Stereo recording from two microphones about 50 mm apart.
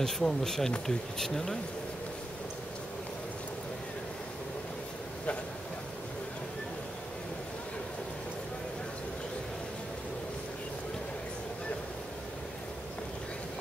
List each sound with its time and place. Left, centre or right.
0.0 s speech: centre